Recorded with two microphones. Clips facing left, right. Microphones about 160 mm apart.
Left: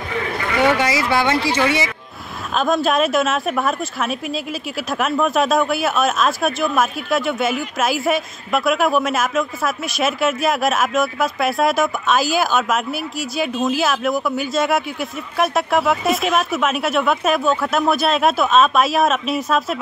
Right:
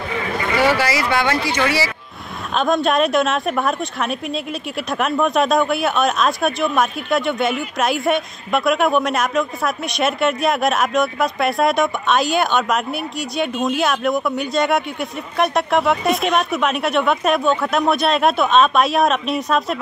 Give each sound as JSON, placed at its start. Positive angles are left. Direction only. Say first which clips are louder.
{"t": 0.7, "sound": "speech", "louder": "left 1 dB", "side_deg": 25}
{"t": 2.5, "sound": "speech", "louder": "even", "side_deg": 0}